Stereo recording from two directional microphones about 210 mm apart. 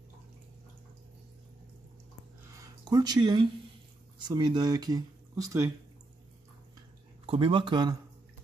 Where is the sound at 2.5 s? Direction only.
15° right (ahead or behind).